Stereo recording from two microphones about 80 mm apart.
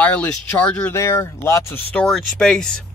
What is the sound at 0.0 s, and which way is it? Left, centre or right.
Speech, centre.